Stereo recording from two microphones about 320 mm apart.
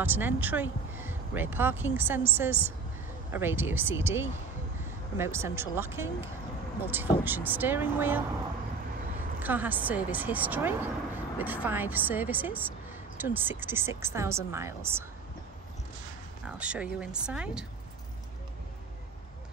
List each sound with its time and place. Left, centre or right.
0.0 s speech: centre
9.4 s speech: centre
16.4 s speech: centre